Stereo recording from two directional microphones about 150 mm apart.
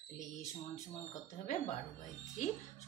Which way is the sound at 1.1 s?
55° left (ahead or behind).